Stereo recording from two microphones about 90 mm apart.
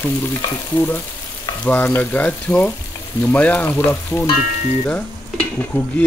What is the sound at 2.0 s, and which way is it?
Speech, 15° left (ahead or behind).